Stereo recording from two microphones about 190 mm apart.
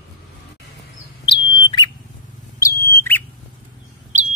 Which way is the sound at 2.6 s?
15° left (ahead or behind).